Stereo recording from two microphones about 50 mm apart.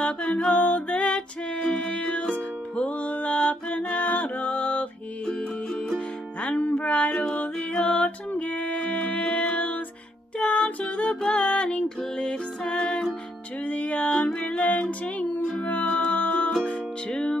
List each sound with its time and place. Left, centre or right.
0.0 s music: left
5.2 s music: centre
7.5 s music: centre
7.9 s music: left
17.1 s music: centre